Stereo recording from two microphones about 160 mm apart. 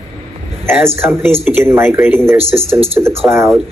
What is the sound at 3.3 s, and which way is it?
Speech, 10° right (ahead or behind).